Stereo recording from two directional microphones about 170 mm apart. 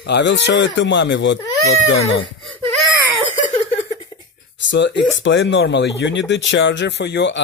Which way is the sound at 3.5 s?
40° left (ahead or behind).